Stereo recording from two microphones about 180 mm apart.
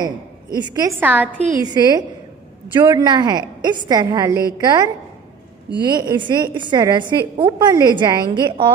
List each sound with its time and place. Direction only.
0.0 s a woman's voice: 25° right (ahead or behind)
0.9 s a woman's voice: 10° right (ahead or behind)
1.6 s a woman's voice: 25° right (ahead or behind)